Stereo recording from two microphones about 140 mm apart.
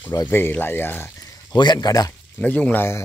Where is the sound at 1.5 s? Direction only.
30° left (ahead or behind).